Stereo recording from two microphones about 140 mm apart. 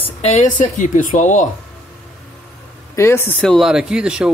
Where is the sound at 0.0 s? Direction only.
50° left (ahead or behind).